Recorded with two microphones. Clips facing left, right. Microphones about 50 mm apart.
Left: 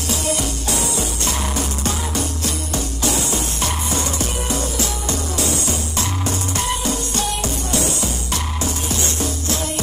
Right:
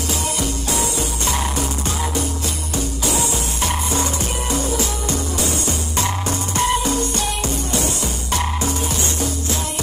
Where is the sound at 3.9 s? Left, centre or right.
Right.